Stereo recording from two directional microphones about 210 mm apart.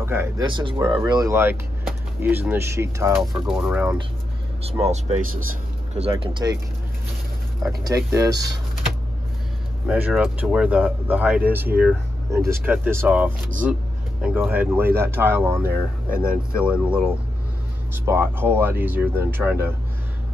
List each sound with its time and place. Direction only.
0.0 s speech: 10° right (ahead or behind)
0.5 s speech: 25° right (ahead or behind)
3.2 s speech: centre (ahead or behind)
4.6 s speech: 30° right (ahead or behind)
7.8 s speech: 15° right (ahead or behind)
9.8 s speech: 5° right (ahead or behind)
15.6 s speech: 45° right (ahead or behind)
16.5 s speech: 5° right (ahead or behind)